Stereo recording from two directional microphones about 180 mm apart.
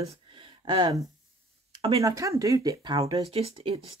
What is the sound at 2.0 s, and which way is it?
Speech, 20° right (ahead or behind).